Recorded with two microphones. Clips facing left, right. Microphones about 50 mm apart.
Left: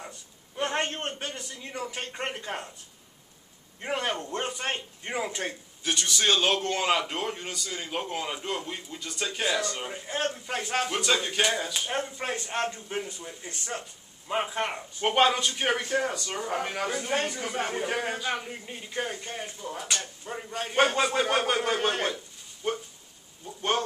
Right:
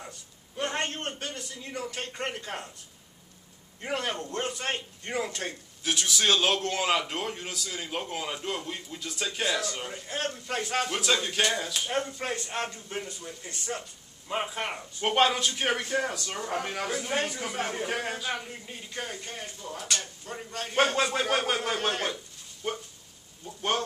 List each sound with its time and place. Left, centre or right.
0.6 s a man's voice: centre
3.8 s a man's voice: centre
5.9 s speech: centre